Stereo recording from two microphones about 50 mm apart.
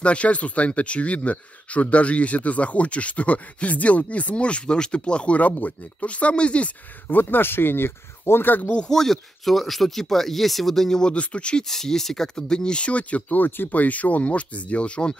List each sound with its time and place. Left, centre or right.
0.0 s speech: left
7.1 s speech: left
8.7 s speech: centre
11.1 s speech: left
11.6 s speech: centre